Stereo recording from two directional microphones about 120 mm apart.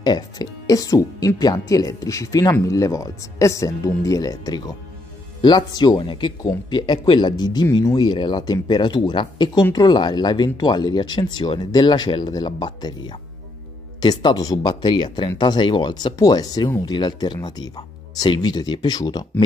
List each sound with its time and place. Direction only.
0.0 s speech: 35° left (ahead or behind)